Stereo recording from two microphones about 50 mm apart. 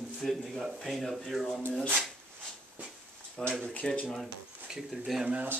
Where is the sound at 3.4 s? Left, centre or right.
Centre.